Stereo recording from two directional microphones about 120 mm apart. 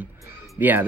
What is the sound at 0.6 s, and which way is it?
Speech, 20° right (ahead or behind).